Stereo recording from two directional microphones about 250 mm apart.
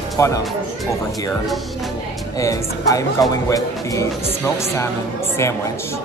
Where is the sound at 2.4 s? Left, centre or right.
Centre.